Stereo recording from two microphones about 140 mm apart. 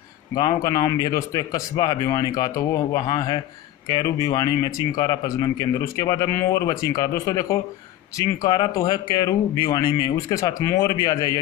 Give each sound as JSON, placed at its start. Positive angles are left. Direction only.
{"t": 0.3, "sound": "speech", "side_deg": 30}